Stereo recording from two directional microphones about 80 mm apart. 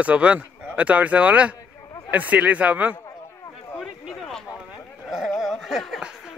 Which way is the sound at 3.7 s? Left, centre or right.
Centre.